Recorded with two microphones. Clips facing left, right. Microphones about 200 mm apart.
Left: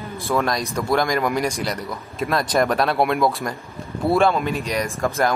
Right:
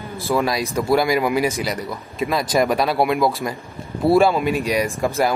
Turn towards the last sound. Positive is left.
turn(degrees=-10)  # may be behind; listen again after turning